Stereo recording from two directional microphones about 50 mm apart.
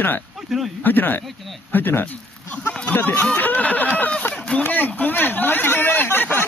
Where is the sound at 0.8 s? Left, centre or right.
Left.